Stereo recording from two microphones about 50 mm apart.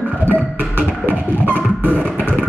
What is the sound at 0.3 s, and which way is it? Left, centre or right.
Music, right.